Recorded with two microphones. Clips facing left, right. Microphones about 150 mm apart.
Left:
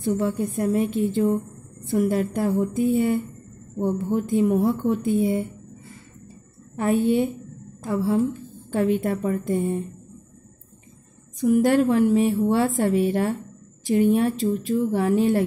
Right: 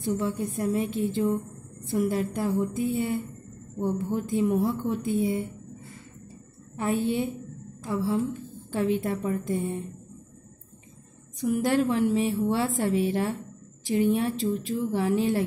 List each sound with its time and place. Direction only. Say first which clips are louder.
0.0 s a woman's voice: left 4 dB; 55° left (ahead or behind)
6.8 s a woman's voice: left 6 dB; 60° left (ahead or behind)
11.4 s a woman's voice: left 6 dB; 50° left (ahead or behind)